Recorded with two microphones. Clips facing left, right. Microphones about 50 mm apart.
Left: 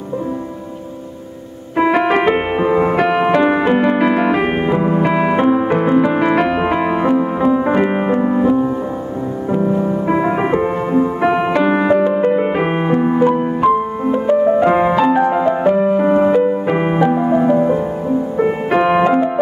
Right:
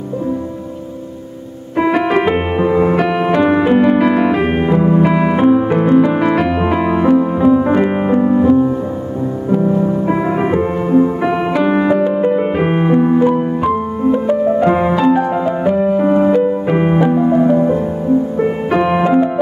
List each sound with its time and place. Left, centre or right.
1.8 s music: centre
18.4 s piano: centre